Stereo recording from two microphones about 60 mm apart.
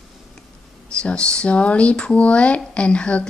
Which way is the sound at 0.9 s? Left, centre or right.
Centre.